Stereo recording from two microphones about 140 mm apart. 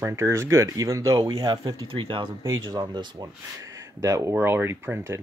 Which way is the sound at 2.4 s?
25° right (ahead or behind).